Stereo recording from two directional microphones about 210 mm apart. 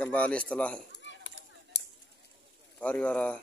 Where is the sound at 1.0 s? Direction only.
60° left (ahead or behind).